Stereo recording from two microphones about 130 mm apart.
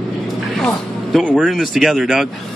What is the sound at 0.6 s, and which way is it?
Music, centre (ahead or behind).